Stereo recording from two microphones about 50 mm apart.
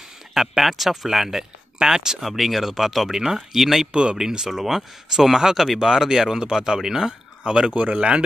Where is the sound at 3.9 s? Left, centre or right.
Centre.